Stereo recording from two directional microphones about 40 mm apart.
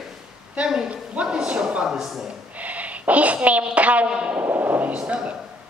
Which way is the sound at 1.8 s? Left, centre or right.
Centre.